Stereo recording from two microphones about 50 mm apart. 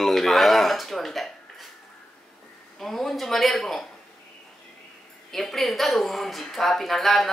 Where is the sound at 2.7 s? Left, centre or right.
Centre.